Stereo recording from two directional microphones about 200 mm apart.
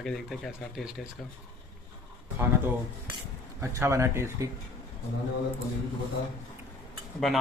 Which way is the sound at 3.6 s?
15° right (ahead or behind).